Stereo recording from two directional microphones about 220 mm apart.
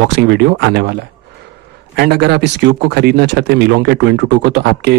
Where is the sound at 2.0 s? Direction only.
45° right (ahead or behind).